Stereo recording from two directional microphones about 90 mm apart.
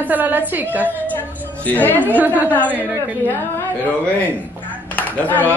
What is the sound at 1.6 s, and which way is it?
Speech, 20° left (ahead or behind).